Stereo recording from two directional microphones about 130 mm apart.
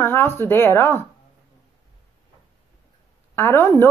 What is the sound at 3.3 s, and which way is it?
Speech, 15° left (ahead or behind).